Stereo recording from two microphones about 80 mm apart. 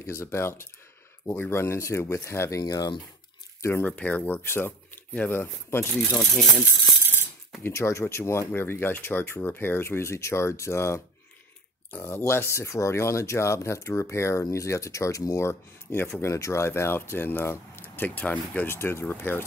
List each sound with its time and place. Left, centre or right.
0.0 s speech: left
2.6 s speech: left
3.8 s speech: centre
7.6 s speech: left